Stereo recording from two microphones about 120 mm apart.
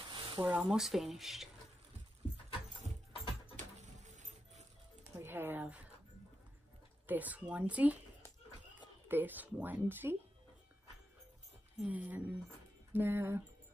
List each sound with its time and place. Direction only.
0.1 s a sound: 40° right (ahead or behind)
0.5 s speech: 10° right (ahead or behind)
3.5 s a sound: 90° right
5.2 s speech: 20° right (ahead or behind)
7.1 s speech: 15° right (ahead or behind)
9.1 s speech: 15° right (ahead or behind)
11.8 s speech: 10° right (ahead or behind)